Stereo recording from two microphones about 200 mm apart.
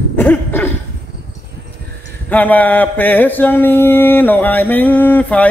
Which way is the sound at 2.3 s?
10° left (ahead or behind).